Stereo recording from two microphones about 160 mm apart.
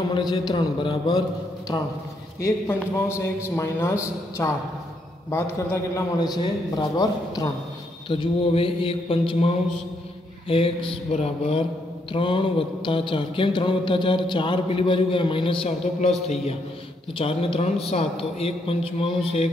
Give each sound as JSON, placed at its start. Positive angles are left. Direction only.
{"t": 0.1, "sound": "a man's voice", "side_deg": 25}
{"t": 3.1, "sound": "a man's voice", "side_deg": 15}
{"t": 8.1, "sound": "a sound", "side_deg": 35}